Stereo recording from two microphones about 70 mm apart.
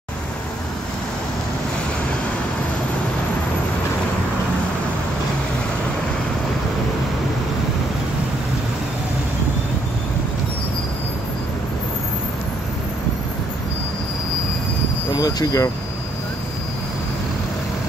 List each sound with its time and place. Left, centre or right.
15.1 s speech: left